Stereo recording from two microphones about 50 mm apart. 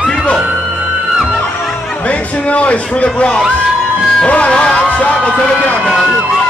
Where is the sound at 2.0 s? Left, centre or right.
Left.